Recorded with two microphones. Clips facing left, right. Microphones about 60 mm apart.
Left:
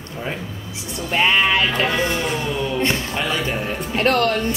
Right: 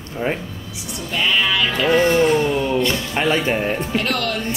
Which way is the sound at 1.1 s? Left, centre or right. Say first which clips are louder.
Left 2 dB; left.